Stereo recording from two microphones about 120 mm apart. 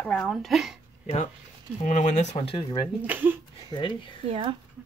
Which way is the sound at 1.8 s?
90° left.